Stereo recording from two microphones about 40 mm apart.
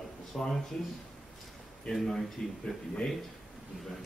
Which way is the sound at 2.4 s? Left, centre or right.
Centre.